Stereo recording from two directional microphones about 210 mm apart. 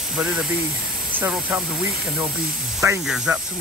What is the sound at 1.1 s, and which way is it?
Speech, 10° right (ahead or behind).